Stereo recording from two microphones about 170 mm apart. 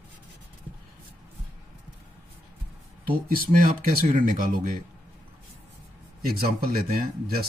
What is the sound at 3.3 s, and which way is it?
Speech, 55° right (ahead or behind).